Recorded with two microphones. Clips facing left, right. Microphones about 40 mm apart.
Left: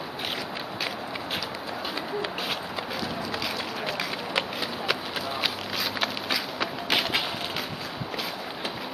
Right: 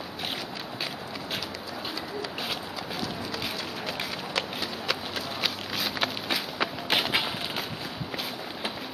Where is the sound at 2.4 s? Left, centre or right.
Centre.